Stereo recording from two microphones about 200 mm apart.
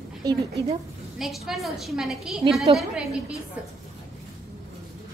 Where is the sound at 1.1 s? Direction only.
Centre (ahead or behind).